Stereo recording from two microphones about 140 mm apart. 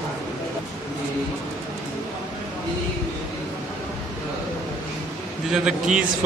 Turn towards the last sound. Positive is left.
turn(degrees=-5)  # may be behind; listen again after turning